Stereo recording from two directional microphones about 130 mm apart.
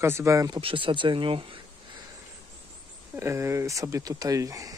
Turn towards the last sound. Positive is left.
turn(degrees=-25)  # may be behind; listen again after turning